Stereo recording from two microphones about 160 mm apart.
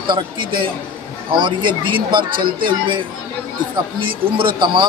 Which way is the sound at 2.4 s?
65° right (ahead or behind).